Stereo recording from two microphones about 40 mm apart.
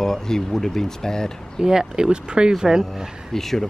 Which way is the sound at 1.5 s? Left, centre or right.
Centre.